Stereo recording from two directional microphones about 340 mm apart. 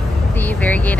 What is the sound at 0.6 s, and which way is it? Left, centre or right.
Speech, centre.